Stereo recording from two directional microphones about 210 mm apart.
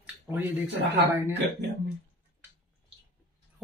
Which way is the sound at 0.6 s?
50° right (ahead or behind).